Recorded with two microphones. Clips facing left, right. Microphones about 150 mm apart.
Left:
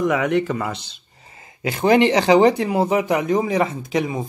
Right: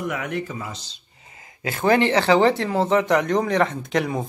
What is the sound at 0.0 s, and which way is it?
Speech, 90° left.